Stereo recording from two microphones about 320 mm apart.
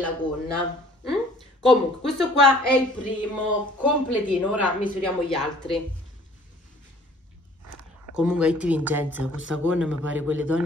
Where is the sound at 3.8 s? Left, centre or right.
Centre.